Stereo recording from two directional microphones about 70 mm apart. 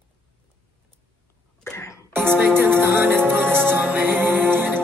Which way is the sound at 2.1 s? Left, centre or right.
Right.